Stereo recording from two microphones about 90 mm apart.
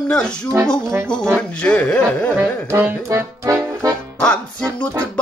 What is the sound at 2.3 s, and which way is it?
Music, 25° right (ahead or behind).